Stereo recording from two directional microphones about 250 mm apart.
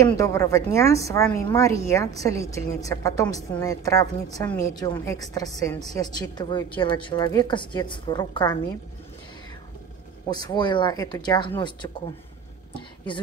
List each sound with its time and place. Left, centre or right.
0.0 s a woman's voice: centre
10.3 s a woman's voice: centre